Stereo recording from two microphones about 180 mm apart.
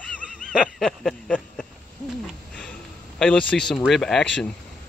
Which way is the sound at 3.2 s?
5° left (ahead or behind).